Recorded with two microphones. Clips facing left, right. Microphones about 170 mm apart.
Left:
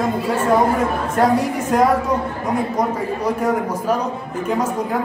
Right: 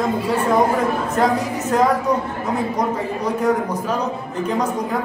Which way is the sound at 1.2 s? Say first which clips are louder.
Left 4 dB; 10° left (ahead or behind).